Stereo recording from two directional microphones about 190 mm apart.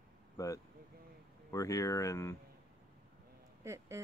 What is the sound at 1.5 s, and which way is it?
Speech, 15° left (ahead or behind).